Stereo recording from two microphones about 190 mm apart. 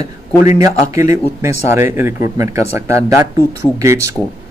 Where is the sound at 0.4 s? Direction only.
15° right (ahead or behind).